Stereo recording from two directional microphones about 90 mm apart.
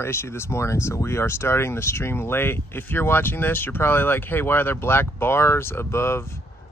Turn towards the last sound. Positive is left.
turn(degrees=30)  # may be behind; listen again after turning